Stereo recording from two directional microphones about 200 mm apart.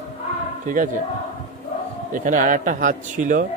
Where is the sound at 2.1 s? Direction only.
40° right (ahead or behind).